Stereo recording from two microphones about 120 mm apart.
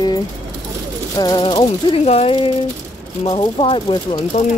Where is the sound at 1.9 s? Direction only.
60° left (ahead or behind).